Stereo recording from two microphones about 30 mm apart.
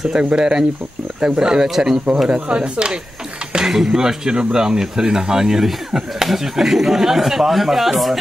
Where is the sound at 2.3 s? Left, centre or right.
Right.